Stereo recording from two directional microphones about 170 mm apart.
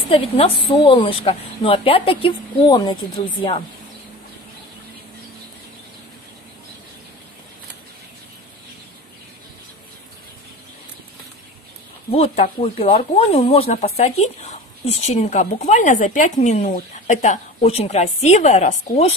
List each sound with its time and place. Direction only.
0.1 s a woman's voice: 35° left (ahead or behind)
12.1 s a woman's voice: 35° left (ahead or behind)